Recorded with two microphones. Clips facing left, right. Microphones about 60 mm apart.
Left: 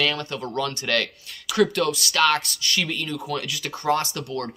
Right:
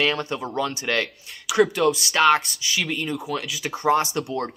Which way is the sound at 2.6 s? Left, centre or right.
Centre.